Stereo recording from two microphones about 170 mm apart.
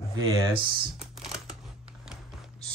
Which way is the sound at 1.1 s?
Centre (ahead or behind).